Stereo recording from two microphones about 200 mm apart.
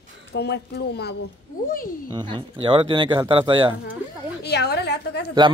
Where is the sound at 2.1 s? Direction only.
25° right (ahead or behind).